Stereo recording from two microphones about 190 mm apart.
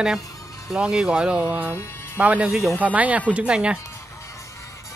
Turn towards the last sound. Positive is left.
turn(degrees=-5)  # may be behind; listen again after turning